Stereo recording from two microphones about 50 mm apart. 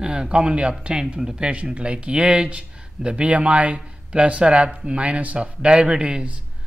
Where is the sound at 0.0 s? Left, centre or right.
Centre.